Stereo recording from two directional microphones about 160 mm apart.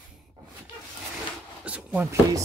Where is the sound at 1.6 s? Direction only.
5° right (ahead or behind).